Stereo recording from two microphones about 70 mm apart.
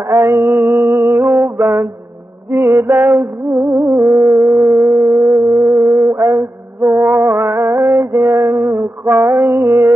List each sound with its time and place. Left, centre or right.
0.0 s music: right
0.6 s music: right
4.7 s howl: right
5.7 s mantra: right
7.0 s music: right